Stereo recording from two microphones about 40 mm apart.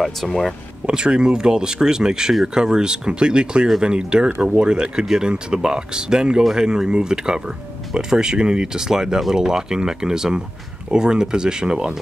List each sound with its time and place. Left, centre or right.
0.0 s speech: centre
0.8 s speech: right